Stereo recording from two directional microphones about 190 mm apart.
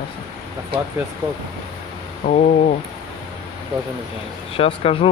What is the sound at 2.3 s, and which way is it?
Speech, 45° left (ahead or behind).